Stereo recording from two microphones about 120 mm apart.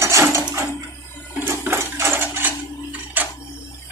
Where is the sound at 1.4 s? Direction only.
20° right (ahead or behind).